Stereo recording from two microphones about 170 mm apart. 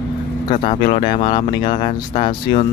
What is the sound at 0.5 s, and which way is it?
Speech, 30° left (ahead or behind).